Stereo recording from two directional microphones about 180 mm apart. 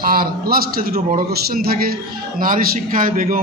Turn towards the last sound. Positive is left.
turn(degrees=-50)  # may be behind; listen again after turning